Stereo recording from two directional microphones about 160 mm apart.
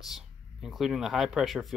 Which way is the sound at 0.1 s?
Centre (ahead or behind).